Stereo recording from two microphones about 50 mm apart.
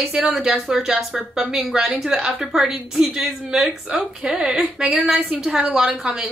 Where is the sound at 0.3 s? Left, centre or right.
Centre.